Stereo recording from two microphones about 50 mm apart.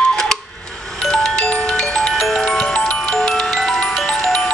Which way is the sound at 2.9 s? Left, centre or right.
Centre.